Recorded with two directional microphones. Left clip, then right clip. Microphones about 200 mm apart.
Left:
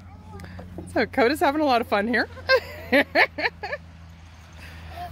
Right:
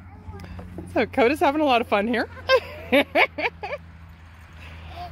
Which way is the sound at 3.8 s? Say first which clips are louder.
Even; 55° left (ahead or behind).